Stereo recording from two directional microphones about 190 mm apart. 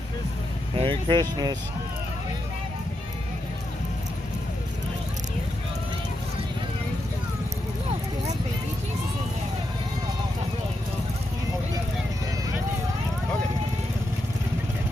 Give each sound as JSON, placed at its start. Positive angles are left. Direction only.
{"t": 0.7, "sound": "speech", "side_deg": -25}